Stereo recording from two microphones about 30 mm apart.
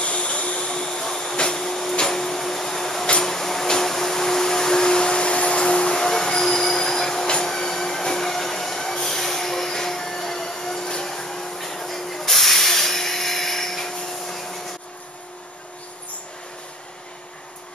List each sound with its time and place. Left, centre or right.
0.0 s vehicle: left
0.7 s vacuum cleaner: centre
1.3 s printer: left
3.2 s a sound: centre
7.4 s train: centre
9.0 s vacuum cleaner: centre
12.3 s a sound: centre